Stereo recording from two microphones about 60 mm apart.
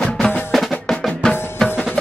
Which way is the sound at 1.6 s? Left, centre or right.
Centre.